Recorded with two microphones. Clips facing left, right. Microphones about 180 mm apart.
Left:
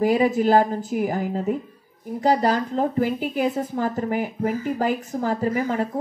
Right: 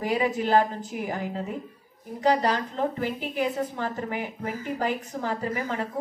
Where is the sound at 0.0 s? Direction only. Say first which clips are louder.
Left 7 dB; 40° left (ahead or behind).